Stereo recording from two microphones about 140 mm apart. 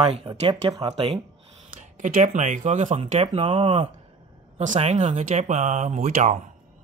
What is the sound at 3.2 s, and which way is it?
Speech, 45° right (ahead or behind).